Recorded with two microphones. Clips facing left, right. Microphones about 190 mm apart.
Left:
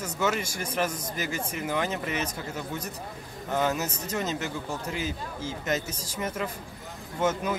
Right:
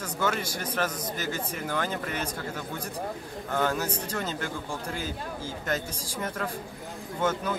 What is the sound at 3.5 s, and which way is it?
A man's voice, 5° left (ahead or behind).